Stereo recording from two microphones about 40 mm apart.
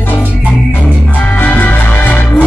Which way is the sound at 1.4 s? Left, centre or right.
Left.